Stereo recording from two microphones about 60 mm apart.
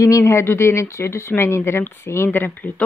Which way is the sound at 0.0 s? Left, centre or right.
Left.